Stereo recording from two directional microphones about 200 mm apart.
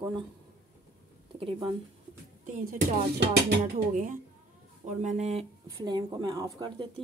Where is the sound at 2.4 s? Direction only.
40° right (ahead or behind).